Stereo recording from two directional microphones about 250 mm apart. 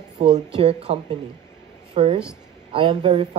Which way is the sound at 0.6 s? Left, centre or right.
Right.